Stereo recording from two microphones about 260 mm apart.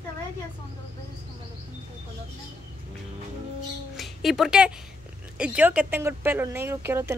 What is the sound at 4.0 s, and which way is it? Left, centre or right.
Speech, centre.